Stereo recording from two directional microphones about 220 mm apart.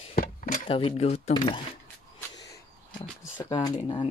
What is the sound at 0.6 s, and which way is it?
Speech, 25° left (ahead or behind).